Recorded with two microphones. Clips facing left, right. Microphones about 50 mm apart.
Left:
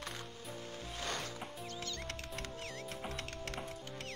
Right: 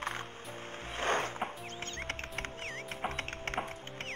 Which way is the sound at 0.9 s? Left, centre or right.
Right.